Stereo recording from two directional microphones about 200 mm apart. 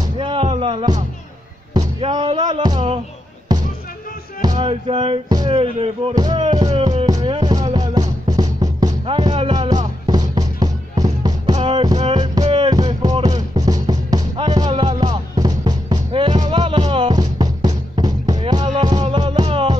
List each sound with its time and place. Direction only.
0.0 s music: 25° right (ahead or behind)
2.0 s a sound: 25° right (ahead or behind)
3.5 s basketball bounce: 20° right (ahead or behind)
4.4 s music: 20° right (ahead or behind)